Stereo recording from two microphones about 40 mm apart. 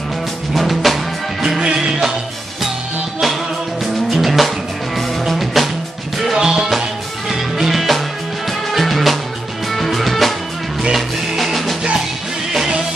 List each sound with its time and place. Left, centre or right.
0.5 s music: centre
3.8 s music: centre
6.3 s music: centre
12.5 s music: centre